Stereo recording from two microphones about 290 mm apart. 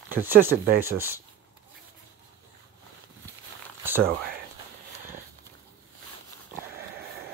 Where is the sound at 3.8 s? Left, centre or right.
Centre.